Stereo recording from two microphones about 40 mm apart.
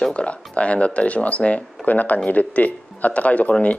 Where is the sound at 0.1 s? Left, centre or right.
Left.